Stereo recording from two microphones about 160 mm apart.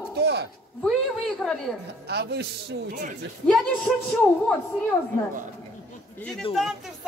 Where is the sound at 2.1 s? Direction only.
90° right.